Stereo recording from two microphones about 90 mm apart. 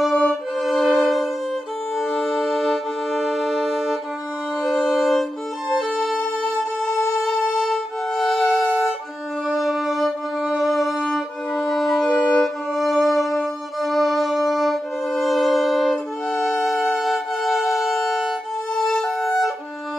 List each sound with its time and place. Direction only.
0.0 s violin: 5° left (ahead or behind)
2.0 s music: 5° left (ahead or behind)
4.8 s violin: centre (ahead or behind)
6.9 s music: 35° left (ahead or behind)
7.2 s music: 5° left (ahead or behind)
7.6 s violin: centre (ahead or behind)
9.5 s music: centre (ahead or behind)